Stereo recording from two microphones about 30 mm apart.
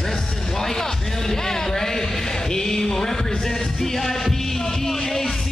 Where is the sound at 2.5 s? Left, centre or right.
Centre.